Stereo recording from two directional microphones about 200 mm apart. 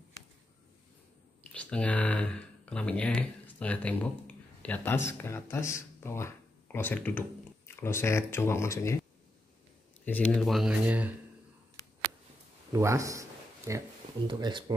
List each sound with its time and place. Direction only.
1.5 s speech: 5° left (ahead or behind)
10.0 s speech: 5° left (ahead or behind)
12.7 s speech: 15° right (ahead or behind)